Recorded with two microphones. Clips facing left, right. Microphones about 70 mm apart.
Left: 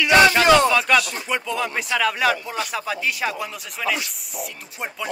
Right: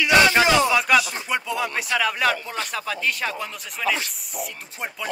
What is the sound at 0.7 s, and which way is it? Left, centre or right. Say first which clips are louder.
Speech: left 1 dB; centre.